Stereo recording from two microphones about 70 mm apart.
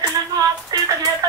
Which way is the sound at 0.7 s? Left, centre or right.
Right.